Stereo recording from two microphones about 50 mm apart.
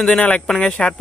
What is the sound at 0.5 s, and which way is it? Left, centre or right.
Speech, left.